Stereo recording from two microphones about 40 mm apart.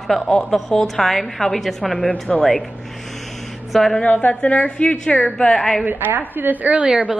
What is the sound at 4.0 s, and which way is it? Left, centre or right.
A woman's voice, left.